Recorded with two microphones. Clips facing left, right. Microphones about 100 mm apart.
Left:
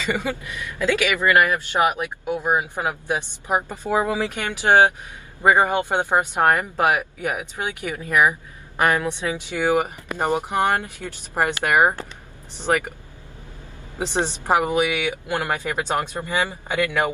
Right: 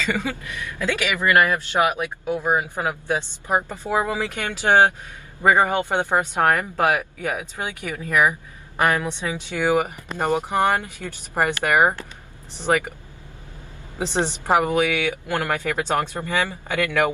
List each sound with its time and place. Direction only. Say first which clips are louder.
0.0 s speech: even; 15° left (ahead or behind)
13.9 s a woman's voice: even; 20° left (ahead or behind)